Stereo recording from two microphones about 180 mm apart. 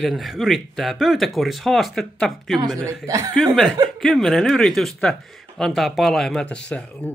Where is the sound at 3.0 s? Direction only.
15° right (ahead or behind).